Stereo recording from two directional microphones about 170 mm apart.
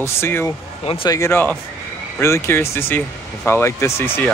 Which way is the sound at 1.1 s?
15° left (ahead or behind).